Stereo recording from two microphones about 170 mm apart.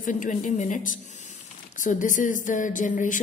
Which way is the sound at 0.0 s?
50° left (ahead or behind).